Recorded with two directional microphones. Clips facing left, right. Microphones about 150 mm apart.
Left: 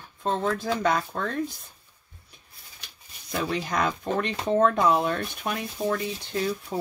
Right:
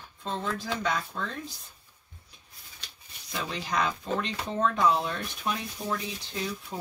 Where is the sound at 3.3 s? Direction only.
50° left (ahead or behind).